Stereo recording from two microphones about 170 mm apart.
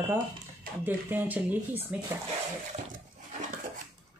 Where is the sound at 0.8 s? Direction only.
10° right (ahead or behind).